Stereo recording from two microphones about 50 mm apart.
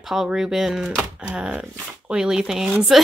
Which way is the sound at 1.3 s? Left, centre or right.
Right.